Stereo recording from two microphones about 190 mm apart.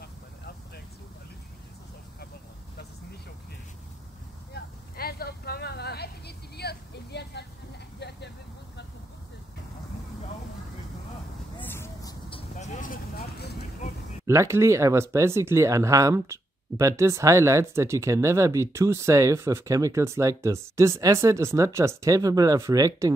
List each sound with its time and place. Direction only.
4.6 s vehicle: 55° left (ahead or behind)
11.6 s vehicle: 15° left (ahead or behind); by 13.8 s 45° left (ahead or behind)
14.2 s speech: 15° right (ahead or behind)